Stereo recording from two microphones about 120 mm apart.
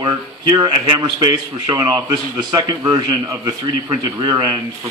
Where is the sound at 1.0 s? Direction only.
35° right (ahead or behind).